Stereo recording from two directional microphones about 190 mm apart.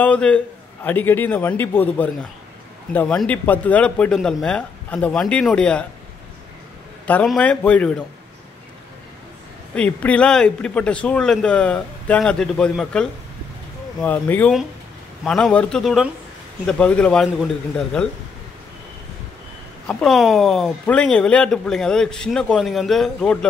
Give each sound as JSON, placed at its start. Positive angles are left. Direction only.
{"t": 0.0, "sound": "a man's voice", "side_deg": 5}
{"t": 7.1, "sound": "a man's voice", "side_deg": 5}
{"t": 9.8, "sound": "a man's voice", "side_deg": 5}
{"t": 19.9, "sound": "speech", "side_deg": 0}